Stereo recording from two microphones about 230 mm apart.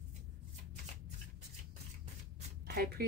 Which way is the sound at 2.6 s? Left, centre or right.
Right.